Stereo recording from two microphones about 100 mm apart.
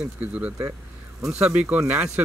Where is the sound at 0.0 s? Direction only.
15° right (ahead or behind).